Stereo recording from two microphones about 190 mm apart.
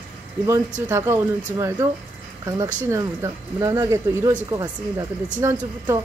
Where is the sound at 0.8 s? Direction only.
15° right (ahead or behind).